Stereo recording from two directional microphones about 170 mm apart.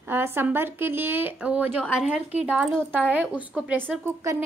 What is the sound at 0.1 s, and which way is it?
A woman's voice, 15° right (ahead or behind).